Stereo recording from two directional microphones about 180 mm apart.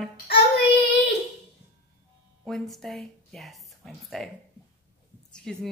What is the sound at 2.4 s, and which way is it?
Speech, centre (ahead or behind).